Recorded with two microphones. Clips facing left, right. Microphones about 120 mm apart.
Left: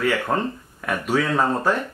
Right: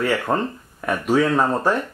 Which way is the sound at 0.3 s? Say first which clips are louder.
Right 2 dB; 10° right (ahead or behind).